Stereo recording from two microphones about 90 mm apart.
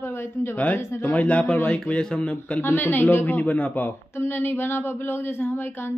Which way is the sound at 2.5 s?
25° left (ahead or behind).